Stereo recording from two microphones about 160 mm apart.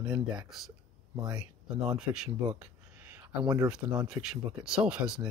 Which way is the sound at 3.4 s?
25° right (ahead or behind).